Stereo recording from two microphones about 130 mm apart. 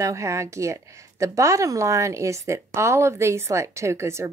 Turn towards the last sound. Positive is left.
turn(degrees=-20)  # may be behind; listen again after turning